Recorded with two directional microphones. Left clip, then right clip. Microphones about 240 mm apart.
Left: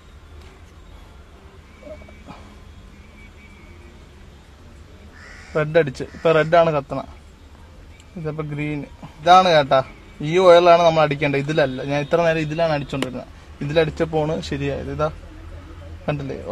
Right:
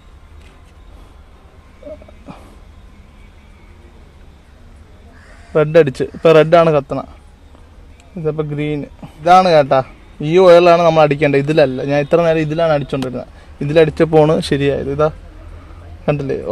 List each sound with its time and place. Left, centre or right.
5.5 s a man's voice: right
8.2 s a man's voice: right